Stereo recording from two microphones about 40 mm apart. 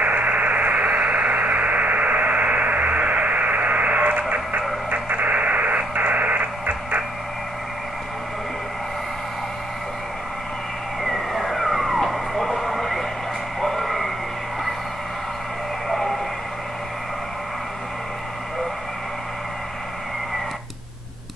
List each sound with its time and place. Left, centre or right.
0.0 s a sound: right
4.2 s radio: right
11.1 s vehicle: centre
13.6 s bow-wow: centre